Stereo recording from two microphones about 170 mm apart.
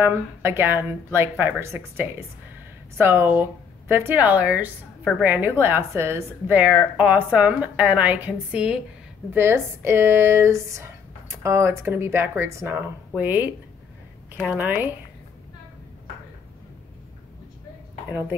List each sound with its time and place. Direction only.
0.0 s speech: 15° right (ahead or behind)
14.5 s speech: 10° right (ahead or behind)